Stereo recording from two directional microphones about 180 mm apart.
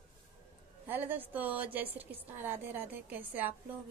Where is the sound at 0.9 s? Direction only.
10° right (ahead or behind).